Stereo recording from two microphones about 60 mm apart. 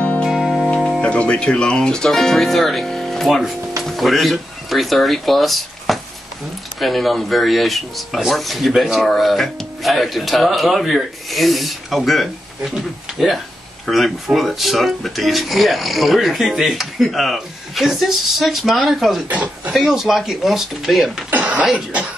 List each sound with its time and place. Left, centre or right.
0.0 s music: left
0.3 s music: centre
1.0 s speech: left; by 19.2 s centre
19.2 s speech: right
19.7 s speech: centre
21.3 s throat clearing: right